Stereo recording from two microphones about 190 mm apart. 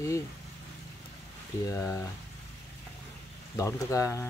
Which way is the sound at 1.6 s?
15° left (ahead or behind).